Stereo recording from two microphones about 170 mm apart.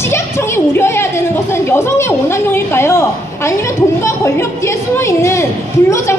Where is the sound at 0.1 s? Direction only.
15° left (ahead or behind).